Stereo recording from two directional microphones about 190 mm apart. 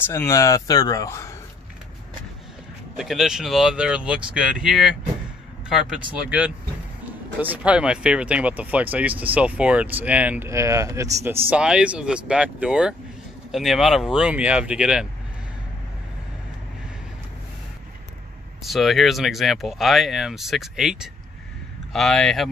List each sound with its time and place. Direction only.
0.0 s speech: 15° left (ahead or behind)
3.0 s speech: centre (ahead or behind)
18.6 s speech: centre (ahead or behind)